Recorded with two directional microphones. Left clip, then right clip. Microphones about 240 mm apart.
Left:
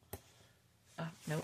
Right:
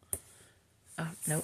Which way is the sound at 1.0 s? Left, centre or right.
Right.